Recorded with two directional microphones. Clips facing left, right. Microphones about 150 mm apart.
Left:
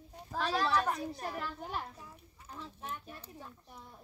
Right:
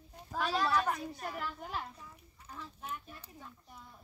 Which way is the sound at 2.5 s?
5° right (ahead or behind).